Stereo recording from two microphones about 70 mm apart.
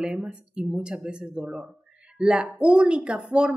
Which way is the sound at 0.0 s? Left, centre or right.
Centre.